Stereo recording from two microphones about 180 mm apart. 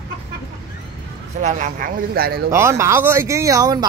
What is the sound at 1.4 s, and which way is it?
Speech, 45° right (ahead or behind).